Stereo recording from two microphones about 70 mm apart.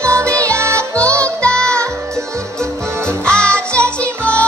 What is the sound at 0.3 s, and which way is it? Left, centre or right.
Music, centre.